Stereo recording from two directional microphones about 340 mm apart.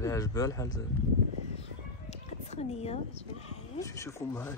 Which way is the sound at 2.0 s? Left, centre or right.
Centre.